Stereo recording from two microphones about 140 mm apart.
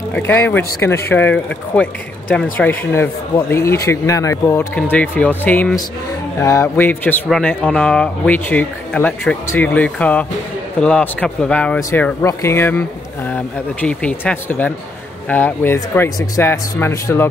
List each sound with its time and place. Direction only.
0.1 s speech: 15° left (ahead or behind)